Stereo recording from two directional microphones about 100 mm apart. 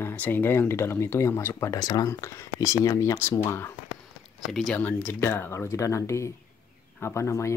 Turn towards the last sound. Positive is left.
turn(degrees=30)  # may be behind; listen again after turning